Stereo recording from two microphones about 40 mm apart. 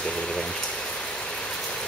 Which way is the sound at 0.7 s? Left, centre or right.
Centre.